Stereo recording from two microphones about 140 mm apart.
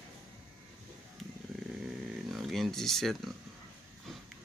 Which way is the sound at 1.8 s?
Centre (ahead or behind).